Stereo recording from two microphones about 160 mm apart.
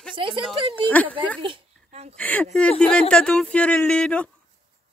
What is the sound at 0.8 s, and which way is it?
Speech, 10° left (ahead or behind).